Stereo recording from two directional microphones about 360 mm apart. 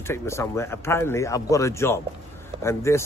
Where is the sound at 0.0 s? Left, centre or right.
Centre.